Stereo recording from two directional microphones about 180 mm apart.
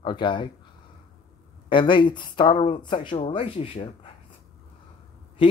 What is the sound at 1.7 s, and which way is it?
Speech, 25° left (ahead or behind).